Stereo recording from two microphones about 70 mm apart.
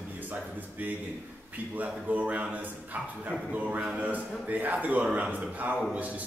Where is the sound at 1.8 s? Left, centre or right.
Right.